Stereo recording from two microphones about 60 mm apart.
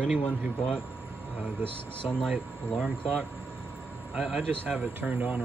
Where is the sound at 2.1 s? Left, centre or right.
Centre.